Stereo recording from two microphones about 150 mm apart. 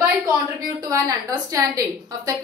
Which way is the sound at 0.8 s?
25° right (ahead or behind).